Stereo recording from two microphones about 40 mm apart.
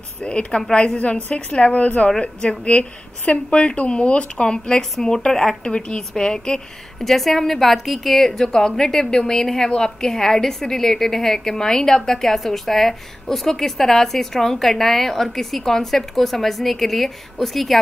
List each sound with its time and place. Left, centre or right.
0.2 s a woman's voice: left
5.6 s speech: left
7.1 s a woman's voice: centre